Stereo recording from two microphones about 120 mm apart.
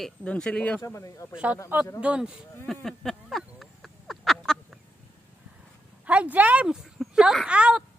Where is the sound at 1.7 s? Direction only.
15° right (ahead or behind).